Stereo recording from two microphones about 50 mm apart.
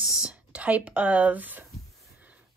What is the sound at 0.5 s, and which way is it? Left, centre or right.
Speech, right.